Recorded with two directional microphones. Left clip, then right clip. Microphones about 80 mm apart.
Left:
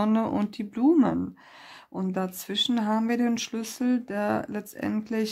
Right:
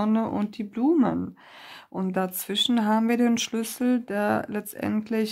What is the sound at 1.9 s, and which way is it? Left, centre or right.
Speech, right.